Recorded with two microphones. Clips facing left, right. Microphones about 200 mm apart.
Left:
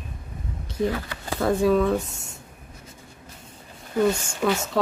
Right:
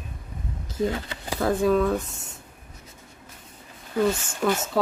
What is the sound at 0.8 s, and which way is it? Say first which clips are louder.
Speech: left 1 dB; 25° right (ahead or behind).